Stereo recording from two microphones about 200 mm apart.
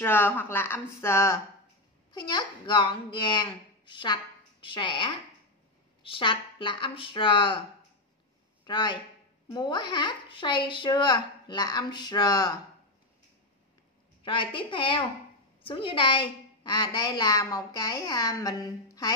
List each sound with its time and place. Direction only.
0.0 s a woman's voice: 10° left (ahead or behind)
8.6 s a woman's voice: 20° left (ahead or behind)
14.2 s a woman's voice: 25° left (ahead or behind)